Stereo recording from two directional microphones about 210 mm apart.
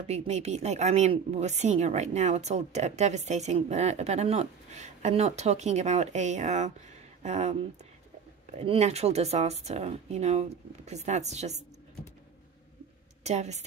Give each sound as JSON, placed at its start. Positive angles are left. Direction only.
{"t": 0.0, "sound": "speech", "side_deg": -30}
{"t": 8.5, "sound": "speech", "side_deg": -30}
{"t": 13.2, "sound": "a woman's voice", "side_deg": -30}